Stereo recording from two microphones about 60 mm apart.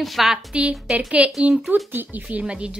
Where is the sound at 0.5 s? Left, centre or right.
Centre.